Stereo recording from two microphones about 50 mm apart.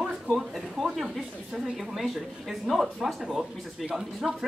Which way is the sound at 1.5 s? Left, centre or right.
Centre.